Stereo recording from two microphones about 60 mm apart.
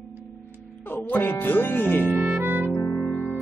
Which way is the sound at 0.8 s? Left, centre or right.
Left.